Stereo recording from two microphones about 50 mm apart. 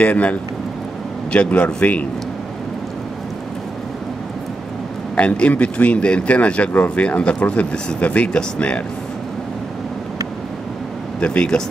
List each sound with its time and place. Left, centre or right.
0.0 s speech: left
5.1 s speech: left
11.1 s speech: left